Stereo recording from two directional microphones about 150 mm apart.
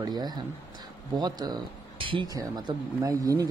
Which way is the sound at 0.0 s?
25° right (ahead or behind).